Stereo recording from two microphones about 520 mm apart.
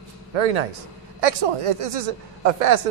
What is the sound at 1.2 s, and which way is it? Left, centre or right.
Speech, right.